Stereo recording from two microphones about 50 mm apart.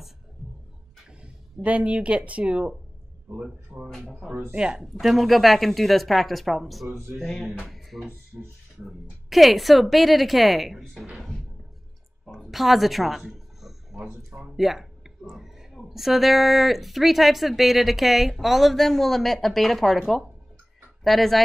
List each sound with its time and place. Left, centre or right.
0.4 s a sound: centre
1.2 s speech: right
3.7 s a man's voice: right
4.6 s speech: centre
5.0 s speech: centre
7.2 s music: centre
7.9 s speech: right
8.3 s speech: centre
9.3 s speech: centre
11.1 s music: centre
12.3 s a sound: centre
14.6 s speech: centre